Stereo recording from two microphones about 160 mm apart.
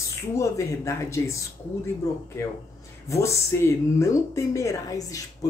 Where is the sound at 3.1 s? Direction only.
20° left (ahead or behind).